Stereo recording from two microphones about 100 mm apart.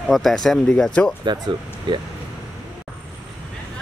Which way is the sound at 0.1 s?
Centre (ahead or behind).